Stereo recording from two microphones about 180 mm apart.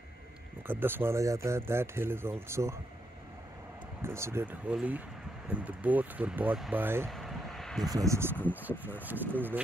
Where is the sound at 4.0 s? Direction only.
15° right (ahead or behind).